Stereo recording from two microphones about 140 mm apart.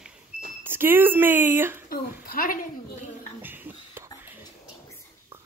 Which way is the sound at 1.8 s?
90° left.